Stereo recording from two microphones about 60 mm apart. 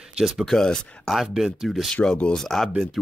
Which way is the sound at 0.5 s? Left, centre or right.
Centre.